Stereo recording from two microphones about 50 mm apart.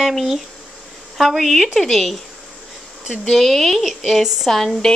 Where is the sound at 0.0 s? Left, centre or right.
Centre.